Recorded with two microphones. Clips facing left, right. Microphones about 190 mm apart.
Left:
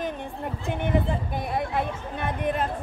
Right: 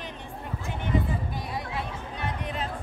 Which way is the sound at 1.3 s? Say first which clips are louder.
Left 6 dB; 55° left (ahead or behind).